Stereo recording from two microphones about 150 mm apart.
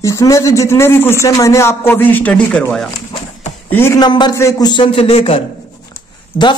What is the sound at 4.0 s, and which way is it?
Speech, 30° left (ahead or behind).